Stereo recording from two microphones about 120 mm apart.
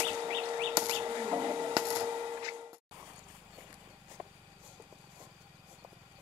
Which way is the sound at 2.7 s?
20° right (ahead or behind).